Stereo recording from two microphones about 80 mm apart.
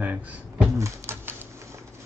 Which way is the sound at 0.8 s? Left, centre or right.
Right.